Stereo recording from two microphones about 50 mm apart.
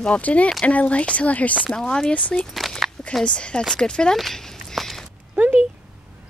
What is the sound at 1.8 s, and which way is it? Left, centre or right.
Speech, centre.